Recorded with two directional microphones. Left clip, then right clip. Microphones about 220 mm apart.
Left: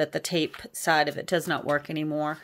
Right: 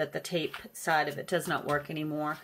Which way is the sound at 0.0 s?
50° left (ahead or behind).